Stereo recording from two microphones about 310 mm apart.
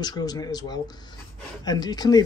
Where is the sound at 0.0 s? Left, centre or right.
Centre.